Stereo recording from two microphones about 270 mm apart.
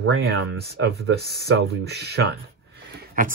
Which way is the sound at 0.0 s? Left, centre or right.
Right.